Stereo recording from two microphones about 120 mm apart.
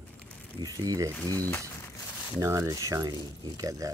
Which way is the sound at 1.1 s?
15° left (ahead or behind).